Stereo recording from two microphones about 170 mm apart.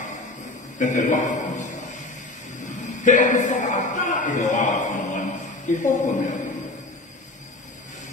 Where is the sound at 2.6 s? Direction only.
45° left (ahead or behind).